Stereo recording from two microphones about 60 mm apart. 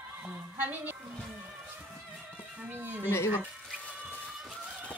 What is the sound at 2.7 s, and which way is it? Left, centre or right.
Speech, right.